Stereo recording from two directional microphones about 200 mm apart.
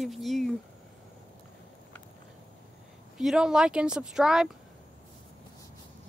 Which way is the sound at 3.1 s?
5° right (ahead or behind).